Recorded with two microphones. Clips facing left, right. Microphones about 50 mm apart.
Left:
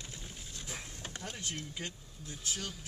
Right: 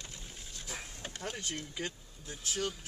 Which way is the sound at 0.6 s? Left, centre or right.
Centre.